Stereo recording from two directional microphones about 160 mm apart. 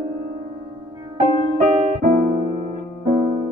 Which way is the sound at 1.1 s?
45° right (ahead or behind).